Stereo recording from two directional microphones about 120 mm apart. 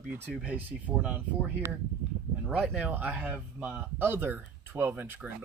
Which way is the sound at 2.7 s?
15° right (ahead or behind).